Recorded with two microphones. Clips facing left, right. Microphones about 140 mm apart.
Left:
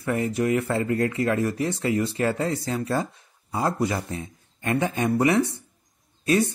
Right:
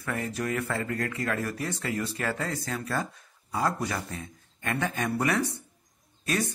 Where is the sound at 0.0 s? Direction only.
25° left (ahead or behind).